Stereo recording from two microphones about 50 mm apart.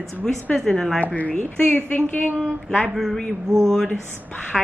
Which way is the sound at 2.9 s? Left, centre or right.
Centre.